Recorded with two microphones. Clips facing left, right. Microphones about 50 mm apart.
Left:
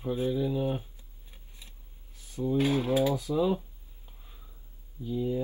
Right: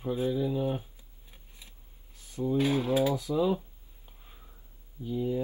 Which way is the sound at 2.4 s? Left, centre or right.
Centre.